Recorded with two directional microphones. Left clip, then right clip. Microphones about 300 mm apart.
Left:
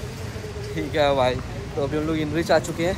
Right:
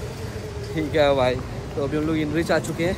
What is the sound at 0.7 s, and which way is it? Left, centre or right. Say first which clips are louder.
Speech: right 1 dB; centre.